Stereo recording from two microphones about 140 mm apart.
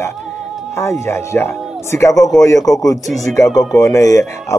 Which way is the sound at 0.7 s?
20° left (ahead or behind).